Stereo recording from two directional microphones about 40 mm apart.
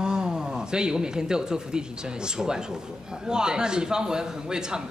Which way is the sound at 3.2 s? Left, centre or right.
Centre.